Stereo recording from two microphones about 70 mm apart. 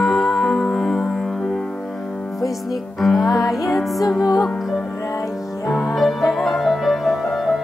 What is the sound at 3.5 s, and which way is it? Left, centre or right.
Speech, centre.